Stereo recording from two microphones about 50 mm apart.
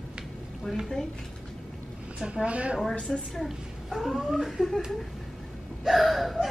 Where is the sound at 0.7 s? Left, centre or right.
Centre.